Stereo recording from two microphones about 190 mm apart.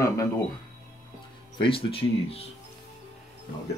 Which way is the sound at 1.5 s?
30° left (ahead or behind).